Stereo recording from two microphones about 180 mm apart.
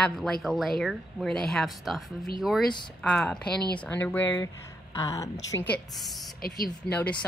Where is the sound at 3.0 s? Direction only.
5° left (ahead or behind).